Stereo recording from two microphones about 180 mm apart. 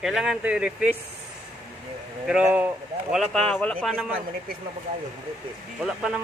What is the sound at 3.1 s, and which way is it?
Speech, 5° left (ahead or behind).